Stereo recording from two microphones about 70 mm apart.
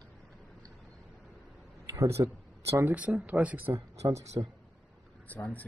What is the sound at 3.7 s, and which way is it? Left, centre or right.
Speech, right.